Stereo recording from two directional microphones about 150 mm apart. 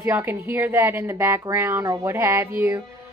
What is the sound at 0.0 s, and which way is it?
A woman's voice, 15° right (ahead or behind).